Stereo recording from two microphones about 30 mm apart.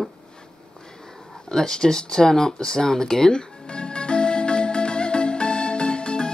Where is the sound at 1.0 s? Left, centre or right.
Centre.